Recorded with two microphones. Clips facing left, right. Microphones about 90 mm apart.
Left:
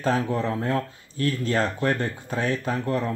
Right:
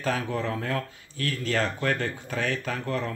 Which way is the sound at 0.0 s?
25° left (ahead or behind).